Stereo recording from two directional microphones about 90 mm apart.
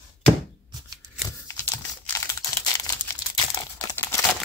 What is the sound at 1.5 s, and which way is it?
Crumpling, 30° left (ahead or behind).